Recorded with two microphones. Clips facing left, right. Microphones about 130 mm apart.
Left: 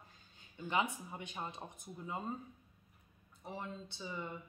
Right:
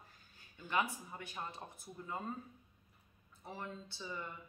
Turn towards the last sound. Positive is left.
turn(degrees=20)  # may be behind; listen again after turning